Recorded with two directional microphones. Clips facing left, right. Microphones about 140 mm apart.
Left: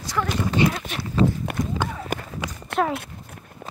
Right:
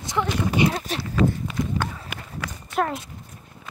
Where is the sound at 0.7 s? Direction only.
35° right (ahead or behind).